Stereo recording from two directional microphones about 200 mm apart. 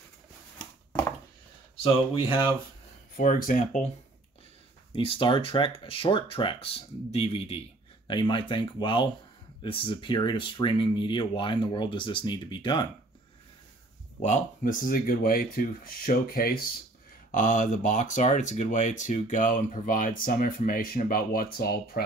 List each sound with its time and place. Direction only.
1.8 s speech: 25° left (ahead or behind)
3.2 s speech: 40° left (ahead or behind)
4.9 s speech: 25° left (ahead or behind)
14.2 s speech: 40° left (ahead or behind)